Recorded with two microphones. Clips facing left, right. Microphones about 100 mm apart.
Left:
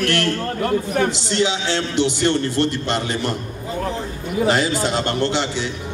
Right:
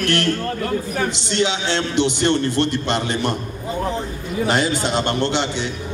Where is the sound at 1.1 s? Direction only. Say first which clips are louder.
Left 1 dB; 20° right (ahead or behind).